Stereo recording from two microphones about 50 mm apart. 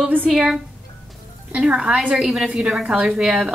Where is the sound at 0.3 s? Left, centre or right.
Centre.